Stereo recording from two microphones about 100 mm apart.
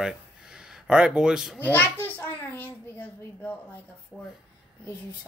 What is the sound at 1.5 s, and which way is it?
A child's voice, 20° left (ahead or behind).